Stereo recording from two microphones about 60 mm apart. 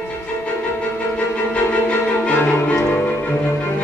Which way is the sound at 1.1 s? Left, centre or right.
Left.